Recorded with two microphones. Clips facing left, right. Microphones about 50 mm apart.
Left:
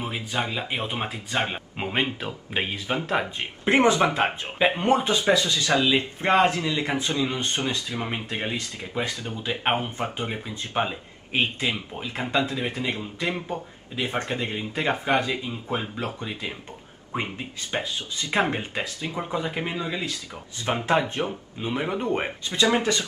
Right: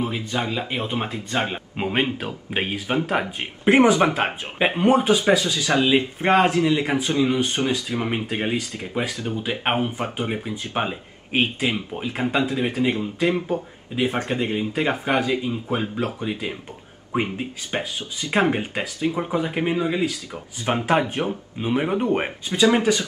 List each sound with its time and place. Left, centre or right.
0.0 s speech: centre; by 8.9 s right
8.9 s speech: centre